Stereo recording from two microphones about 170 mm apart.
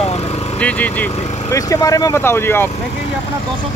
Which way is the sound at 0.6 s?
10° left (ahead or behind).